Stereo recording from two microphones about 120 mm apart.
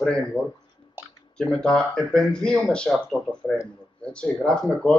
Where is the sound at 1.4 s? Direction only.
5° left (ahead or behind).